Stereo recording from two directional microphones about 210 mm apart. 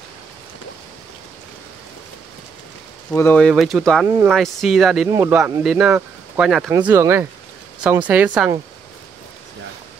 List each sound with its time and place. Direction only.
3.1 s speech: 10° left (ahead or behind); by 8.5 s 10° right (ahead or behind)